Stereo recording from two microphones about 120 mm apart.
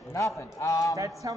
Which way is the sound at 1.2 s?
30° right (ahead or behind).